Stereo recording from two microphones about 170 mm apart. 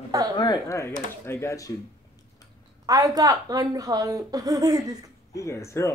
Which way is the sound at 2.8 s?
20° right (ahead or behind).